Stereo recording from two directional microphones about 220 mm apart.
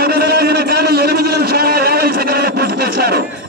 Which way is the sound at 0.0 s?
45° right (ahead or behind).